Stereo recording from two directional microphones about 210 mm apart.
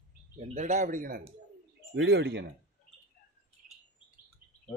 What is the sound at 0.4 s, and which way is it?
Speech, 35° right (ahead or behind).